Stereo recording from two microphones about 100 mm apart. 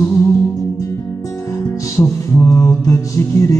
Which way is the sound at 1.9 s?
30° left (ahead or behind).